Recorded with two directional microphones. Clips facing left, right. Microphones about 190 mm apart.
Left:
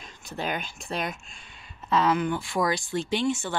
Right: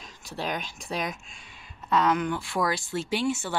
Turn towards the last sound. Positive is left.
turn(degrees=-5)  # may be behind; listen again after turning